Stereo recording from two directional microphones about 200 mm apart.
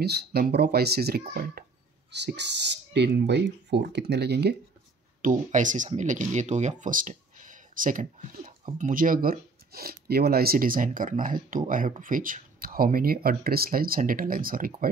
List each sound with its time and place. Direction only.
0.0 s speech: 55° right (ahead or behind)
2.1 s speech: 60° right (ahead or behind)
5.2 s speech: 40° right (ahead or behind)